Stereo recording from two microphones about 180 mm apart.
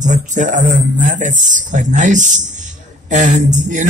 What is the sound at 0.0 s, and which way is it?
A man's voice, 45° right (ahead or behind).